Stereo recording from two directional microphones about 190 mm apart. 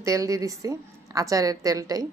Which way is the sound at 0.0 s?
15° right (ahead or behind).